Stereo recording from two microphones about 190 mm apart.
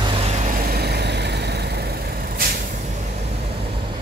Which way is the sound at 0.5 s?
50° right (ahead or behind).